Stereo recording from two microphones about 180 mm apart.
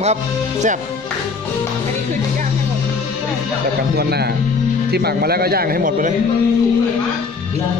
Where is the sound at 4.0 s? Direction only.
65° right (ahead or behind).